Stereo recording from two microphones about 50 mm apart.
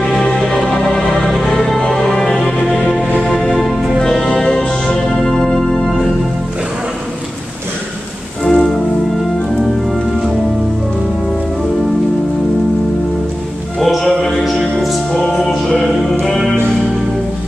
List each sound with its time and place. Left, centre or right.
0.0 s music: centre
3.5 s music: centre
8.5 s music: centre
13.7 s music: centre